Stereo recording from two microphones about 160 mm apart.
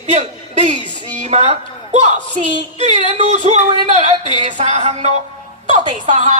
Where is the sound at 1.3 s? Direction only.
40° right (ahead or behind).